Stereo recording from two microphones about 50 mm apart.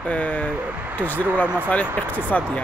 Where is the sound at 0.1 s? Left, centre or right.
Left.